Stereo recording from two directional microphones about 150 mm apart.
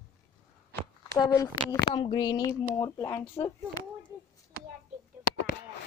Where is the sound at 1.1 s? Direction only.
25° left (ahead or behind).